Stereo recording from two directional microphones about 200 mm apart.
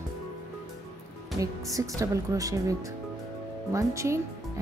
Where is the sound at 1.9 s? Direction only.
15° right (ahead or behind).